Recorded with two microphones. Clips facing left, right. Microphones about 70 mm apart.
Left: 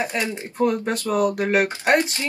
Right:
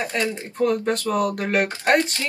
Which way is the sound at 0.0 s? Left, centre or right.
Centre.